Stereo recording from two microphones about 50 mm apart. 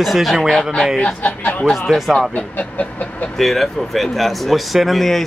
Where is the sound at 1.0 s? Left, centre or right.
Left.